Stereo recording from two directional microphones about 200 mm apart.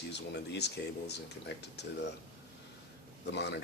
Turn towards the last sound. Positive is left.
turn(degrees=60)  # may be behind; listen again after turning